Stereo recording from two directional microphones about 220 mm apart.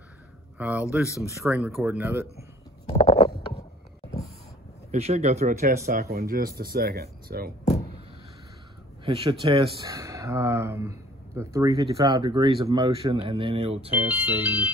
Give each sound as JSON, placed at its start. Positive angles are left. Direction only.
{"t": 0.6, "sound": "speech", "side_deg": -5}
{"t": 1.0, "sound": "speech", "side_deg": 15}
{"t": 1.5, "sound": "speech", "side_deg": -10}
{"t": 2.9, "sound": "a sound", "side_deg": 30}
{"t": 4.9, "sound": "speech", "side_deg": -30}
{"t": 5.9, "sound": "speech", "side_deg": -45}
{"t": 9.0, "sound": "speech", "side_deg": -25}
{"t": 13.8, "sound": "speech", "side_deg": -5}